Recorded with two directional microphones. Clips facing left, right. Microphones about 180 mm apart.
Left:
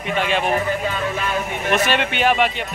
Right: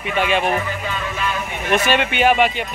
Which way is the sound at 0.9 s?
45° left (ahead or behind).